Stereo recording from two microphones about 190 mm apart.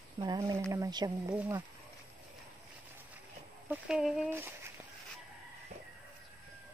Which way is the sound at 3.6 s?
5° right (ahead or behind).